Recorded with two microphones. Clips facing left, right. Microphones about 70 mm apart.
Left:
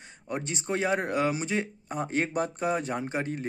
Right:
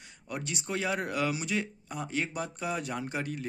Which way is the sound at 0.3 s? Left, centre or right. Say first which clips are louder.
Left 4 dB; left.